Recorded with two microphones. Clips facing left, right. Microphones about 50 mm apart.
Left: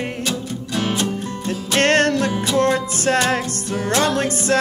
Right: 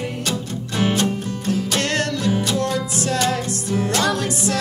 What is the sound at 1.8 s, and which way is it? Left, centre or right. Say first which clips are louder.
Music: left 6 dB; left.